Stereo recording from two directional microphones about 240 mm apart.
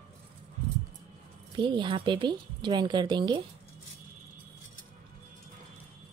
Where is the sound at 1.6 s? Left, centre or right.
Centre.